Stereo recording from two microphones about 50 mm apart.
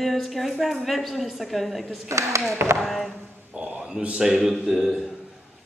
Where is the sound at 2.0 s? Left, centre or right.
Right.